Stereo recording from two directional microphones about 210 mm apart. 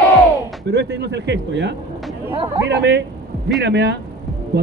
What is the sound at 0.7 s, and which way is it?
A man's voice, 55° right (ahead or behind).